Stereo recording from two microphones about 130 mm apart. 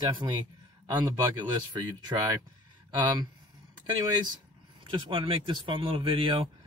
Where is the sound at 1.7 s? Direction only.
35° right (ahead or behind).